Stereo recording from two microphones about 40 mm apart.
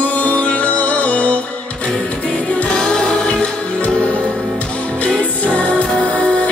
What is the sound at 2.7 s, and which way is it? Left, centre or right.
Music, centre.